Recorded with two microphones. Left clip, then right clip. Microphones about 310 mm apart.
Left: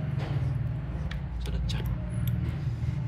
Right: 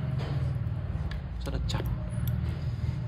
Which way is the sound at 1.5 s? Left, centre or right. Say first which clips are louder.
Right 3 dB; right.